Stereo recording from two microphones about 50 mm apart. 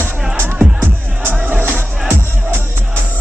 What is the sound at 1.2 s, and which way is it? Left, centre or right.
Music, right.